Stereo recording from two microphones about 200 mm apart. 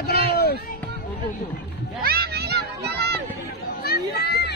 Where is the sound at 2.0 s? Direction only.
50° right (ahead or behind).